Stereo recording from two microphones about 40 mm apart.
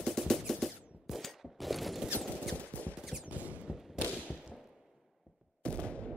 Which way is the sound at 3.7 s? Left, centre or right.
Centre.